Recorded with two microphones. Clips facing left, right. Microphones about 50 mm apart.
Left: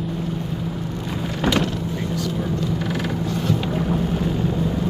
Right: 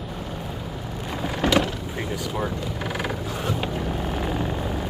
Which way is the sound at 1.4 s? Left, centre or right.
Centre.